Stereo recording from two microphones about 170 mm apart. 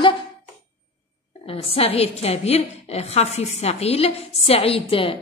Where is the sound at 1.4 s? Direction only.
35° left (ahead or behind).